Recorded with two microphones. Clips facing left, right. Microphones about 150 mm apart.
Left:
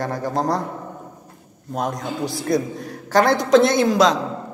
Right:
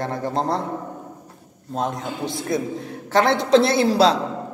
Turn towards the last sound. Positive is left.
turn(degrees=-30)  # may be behind; listen again after turning